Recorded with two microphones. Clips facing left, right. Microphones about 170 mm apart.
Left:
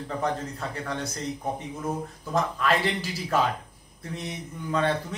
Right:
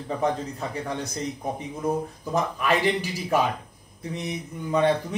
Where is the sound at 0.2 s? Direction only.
15° right (ahead or behind).